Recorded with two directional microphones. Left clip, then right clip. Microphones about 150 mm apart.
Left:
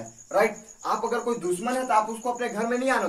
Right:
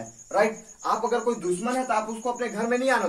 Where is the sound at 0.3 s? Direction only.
20° right (ahead or behind).